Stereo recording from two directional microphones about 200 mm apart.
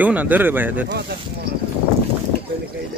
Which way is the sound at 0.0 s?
10° right (ahead or behind).